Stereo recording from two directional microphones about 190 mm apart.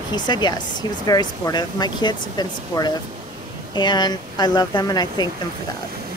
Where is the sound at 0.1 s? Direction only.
20° left (ahead or behind).